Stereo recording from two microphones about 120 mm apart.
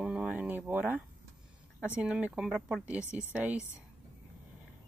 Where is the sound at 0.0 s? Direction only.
10° right (ahead or behind).